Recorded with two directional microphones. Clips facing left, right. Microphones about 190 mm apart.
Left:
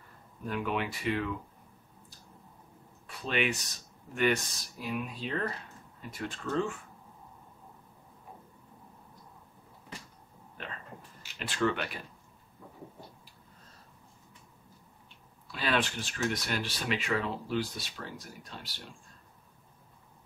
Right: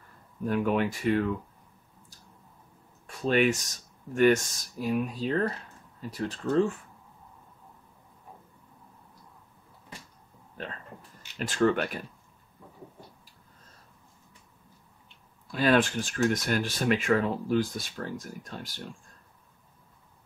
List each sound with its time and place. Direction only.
0.5 s speech: 45° right (ahead or behind)
3.1 s speech: 45° right (ahead or behind)
10.6 s a sound: 40° right (ahead or behind)
11.3 s speech: 45° right (ahead or behind)
15.5 s speech: 45° right (ahead or behind)